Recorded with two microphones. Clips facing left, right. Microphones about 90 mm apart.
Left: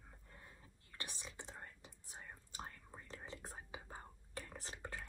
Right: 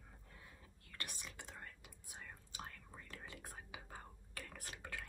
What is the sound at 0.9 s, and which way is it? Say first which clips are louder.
Whispering: even; 20° left (ahead or behind).